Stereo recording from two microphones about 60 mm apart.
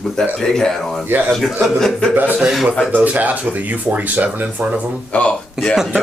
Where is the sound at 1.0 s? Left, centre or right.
Right.